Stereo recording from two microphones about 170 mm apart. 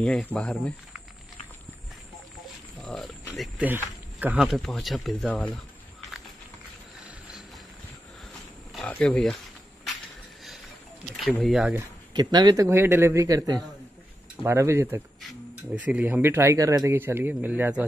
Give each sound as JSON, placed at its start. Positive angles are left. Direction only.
{"t": 0.0, "sound": "speech", "side_deg": 5}
{"t": 2.8, "sound": "cricket", "side_deg": 0}
{"t": 3.3, "sound": "speech", "side_deg": -10}
{"t": 8.7, "sound": "speech", "side_deg": 5}
{"t": 11.1, "sound": "speech", "side_deg": 0}
{"t": 12.1, "sound": "a man's voice", "side_deg": -25}